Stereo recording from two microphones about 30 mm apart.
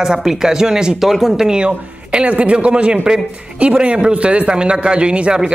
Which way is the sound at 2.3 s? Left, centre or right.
Right.